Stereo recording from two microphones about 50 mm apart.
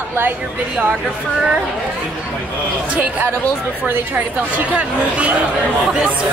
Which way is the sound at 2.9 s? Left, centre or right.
Right.